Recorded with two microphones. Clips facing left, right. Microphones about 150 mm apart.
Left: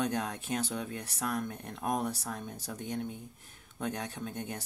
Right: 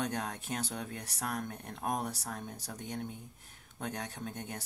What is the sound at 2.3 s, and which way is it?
Speech, 30° left (ahead or behind).